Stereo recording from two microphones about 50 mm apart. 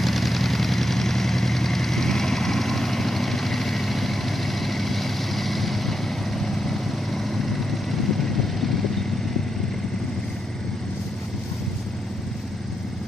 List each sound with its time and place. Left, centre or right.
0.0 s vehicle: centre